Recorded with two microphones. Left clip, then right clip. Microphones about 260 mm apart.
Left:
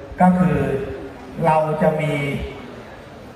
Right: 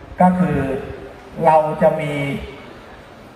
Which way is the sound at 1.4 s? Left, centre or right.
Right.